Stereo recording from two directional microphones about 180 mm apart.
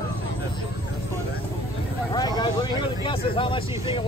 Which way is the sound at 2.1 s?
20° left (ahead or behind).